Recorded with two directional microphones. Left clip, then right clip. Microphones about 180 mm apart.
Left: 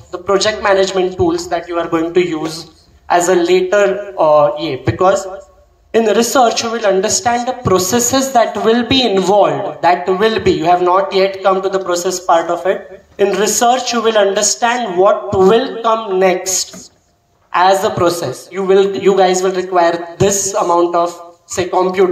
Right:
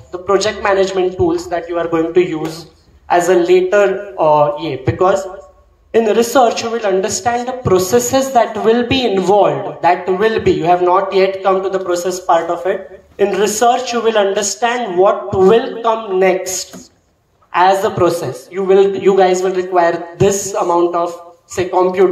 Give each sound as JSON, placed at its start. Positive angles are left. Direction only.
{"t": 0.1, "sound": "a woman's voice", "side_deg": 45}